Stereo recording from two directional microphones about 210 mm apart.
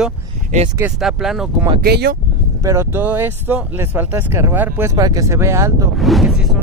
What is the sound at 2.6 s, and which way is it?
Speech, 15° right (ahead or behind).